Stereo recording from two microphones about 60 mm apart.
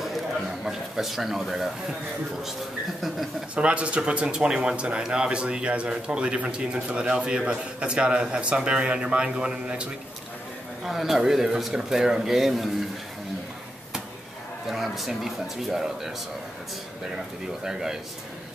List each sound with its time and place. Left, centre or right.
0.7 s speech: centre
3.5 s a man's voice: centre
10.8 s a man's voice: centre
14.7 s speech: centre
17.6 s a man's voice: centre